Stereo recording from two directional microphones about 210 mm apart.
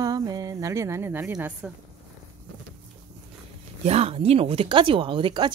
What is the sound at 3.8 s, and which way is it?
Speech, 30° right (ahead or behind).